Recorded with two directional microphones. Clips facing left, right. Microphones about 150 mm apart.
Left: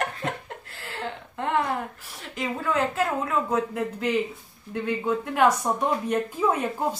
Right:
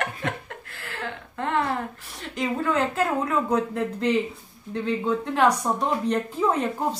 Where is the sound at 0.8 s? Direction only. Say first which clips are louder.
Left 1 dB; 25° left (ahead or behind).